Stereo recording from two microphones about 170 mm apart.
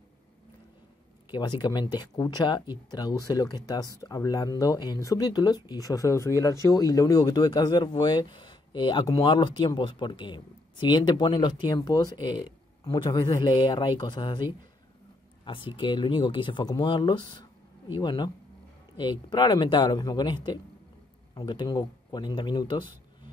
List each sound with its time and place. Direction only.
1.6 s speech: 25° left (ahead or behind)